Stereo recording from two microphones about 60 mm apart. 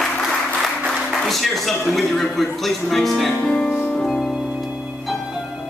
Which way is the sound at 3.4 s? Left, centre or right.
Centre.